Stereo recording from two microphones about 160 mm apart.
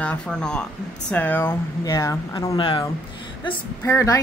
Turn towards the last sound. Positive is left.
turn(degrees=15)  # may be behind; listen again after turning